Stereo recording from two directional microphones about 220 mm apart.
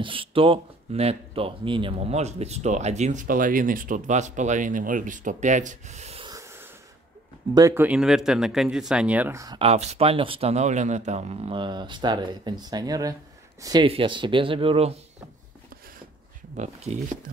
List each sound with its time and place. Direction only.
0.0 s speech: 25° right (ahead or behind)
6.3 s a sound: 10° right (ahead or behind)
7.5 s speech: 15° right (ahead or behind)
9.6 s a man's voice: 30° right (ahead or behind)
16.5 s speech: 30° right (ahead or behind)